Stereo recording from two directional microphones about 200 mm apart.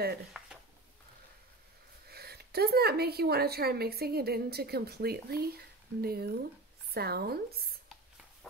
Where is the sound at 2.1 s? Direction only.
50° right (ahead or behind).